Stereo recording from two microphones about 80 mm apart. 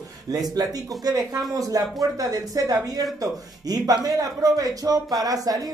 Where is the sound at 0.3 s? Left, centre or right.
Right.